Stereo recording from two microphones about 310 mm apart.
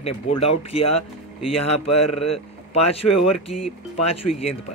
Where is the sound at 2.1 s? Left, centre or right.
Centre.